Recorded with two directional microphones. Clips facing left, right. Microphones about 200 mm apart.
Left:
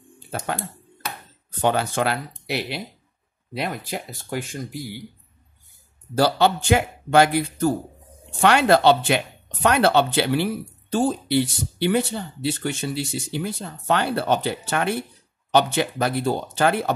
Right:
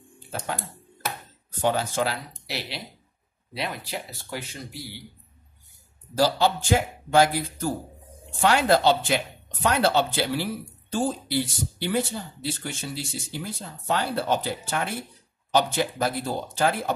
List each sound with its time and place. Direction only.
1.6 s speech: 65° left (ahead or behind); by 5.0 s 50° left (ahead or behind)
6.1 s speech: 65° left (ahead or behind)